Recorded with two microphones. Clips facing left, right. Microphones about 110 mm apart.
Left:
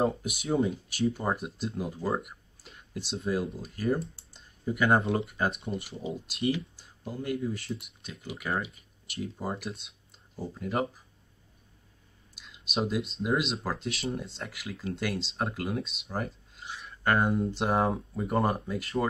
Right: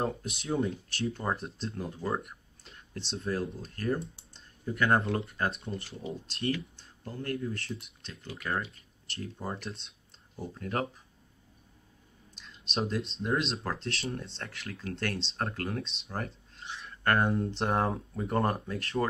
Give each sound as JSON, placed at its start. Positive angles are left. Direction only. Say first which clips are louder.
{"t": 0.0, "sound": "speech", "louder": "left 5 dB", "side_deg": 5}
{"t": 4.0, "sound": "speech", "louder": "left 3 dB", "side_deg": -15}
{"t": 4.3, "sound": "computer keyboard", "louder": "left 5 dB", "side_deg": 10}
{"t": 5.1, "sound": "speech", "louder": "left 3 dB", "side_deg": 10}
{"t": 12.4, "sound": "a sound", "louder": "left 2 dB", "side_deg": 5}
{"t": 13.2, "sound": "speech", "louder": "left 2 dB", "side_deg": 5}